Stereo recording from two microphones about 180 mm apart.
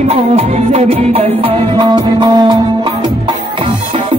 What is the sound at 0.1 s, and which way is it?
Music, 35° right (ahead or behind).